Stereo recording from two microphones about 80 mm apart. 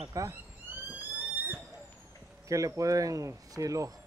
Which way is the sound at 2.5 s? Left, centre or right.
Right.